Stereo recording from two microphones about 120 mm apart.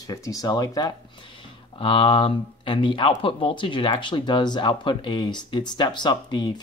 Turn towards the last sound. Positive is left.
turn(degrees=40)  # may be behind; listen again after turning